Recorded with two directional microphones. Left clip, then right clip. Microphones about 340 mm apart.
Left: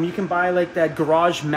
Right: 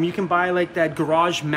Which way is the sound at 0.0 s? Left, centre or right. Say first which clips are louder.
Even; centre.